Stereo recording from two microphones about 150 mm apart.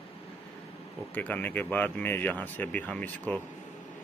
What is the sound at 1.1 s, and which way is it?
Speech, 10° left (ahead or behind).